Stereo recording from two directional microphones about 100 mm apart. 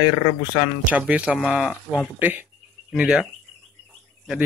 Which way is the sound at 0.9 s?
15° right (ahead or behind).